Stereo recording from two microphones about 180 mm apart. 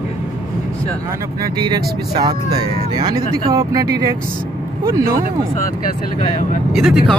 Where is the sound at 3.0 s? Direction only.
25° right (ahead or behind).